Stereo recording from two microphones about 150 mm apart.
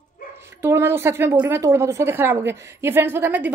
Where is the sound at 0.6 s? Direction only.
15° right (ahead or behind).